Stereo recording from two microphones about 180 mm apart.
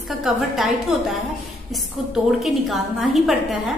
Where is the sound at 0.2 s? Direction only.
Centre (ahead or behind).